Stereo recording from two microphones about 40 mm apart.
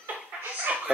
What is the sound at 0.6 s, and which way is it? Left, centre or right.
Chuckle, right.